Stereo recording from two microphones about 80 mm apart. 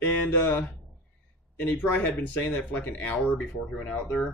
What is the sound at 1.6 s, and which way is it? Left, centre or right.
A man's voice, centre.